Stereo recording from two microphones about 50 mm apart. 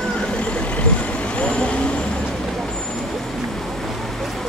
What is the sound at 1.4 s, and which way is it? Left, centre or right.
Vehicle, left.